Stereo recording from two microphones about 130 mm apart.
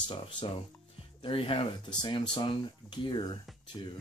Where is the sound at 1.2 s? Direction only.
45° left (ahead or behind).